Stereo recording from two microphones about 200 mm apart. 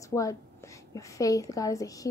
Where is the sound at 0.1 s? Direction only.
15° left (ahead or behind).